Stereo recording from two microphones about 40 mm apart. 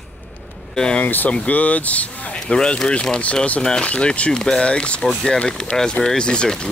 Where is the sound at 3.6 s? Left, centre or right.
Centre.